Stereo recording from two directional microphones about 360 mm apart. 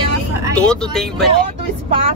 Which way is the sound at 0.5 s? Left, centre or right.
Centre.